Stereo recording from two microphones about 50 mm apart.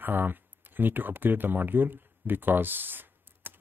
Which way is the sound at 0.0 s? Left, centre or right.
Right.